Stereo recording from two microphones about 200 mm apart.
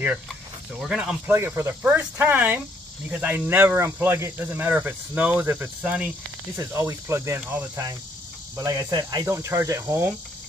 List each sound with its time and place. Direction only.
0.7 s speech: 5° right (ahead or behind)